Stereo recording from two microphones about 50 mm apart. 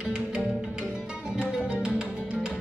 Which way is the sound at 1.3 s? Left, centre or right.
Centre.